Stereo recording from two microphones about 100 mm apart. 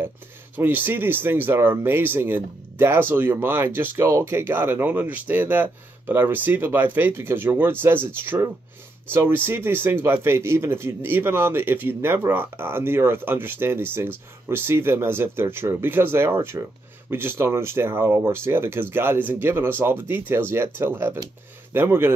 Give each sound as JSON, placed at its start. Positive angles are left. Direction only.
{"t": 0.6, "sound": "speech", "side_deg": -20}